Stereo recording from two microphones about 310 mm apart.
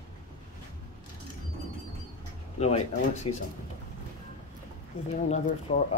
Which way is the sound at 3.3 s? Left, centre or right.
Centre.